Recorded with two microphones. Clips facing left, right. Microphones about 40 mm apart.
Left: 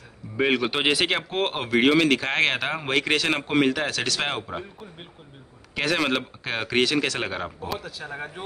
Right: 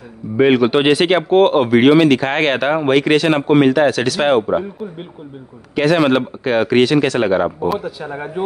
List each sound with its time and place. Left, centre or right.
0.4 s speech: centre
5.8 s a man's voice: centre